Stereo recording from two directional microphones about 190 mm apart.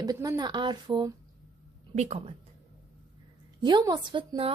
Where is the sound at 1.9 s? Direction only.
35° right (ahead or behind).